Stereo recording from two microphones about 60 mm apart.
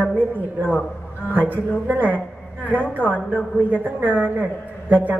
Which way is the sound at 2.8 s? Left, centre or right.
Left.